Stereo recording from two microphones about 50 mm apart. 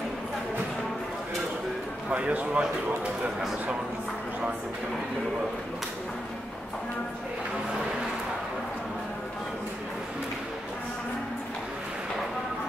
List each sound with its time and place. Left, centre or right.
2.0 s a man's voice: right